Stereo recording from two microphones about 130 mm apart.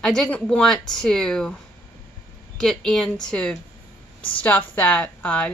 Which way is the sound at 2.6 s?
5° left (ahead or behind).